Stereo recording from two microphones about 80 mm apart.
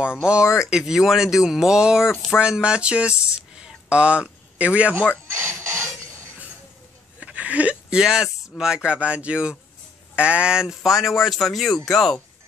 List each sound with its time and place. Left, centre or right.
0.2 s speech: centre
3.5 s a sound: centre
5.3 s speech: right
7.2 s speech: centre
11.0 s speech: centre